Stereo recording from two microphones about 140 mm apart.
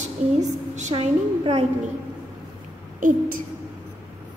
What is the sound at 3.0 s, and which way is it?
Speech, 70° right (ahead or behind).